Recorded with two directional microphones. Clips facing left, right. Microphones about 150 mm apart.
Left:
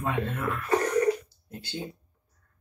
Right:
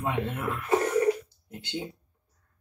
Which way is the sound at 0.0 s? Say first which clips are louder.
Even; 20° right (ahead or behind).